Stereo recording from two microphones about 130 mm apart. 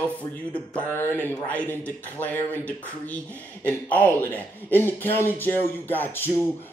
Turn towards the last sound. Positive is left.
turn(degrees=15)  # may be behind; listen again after turning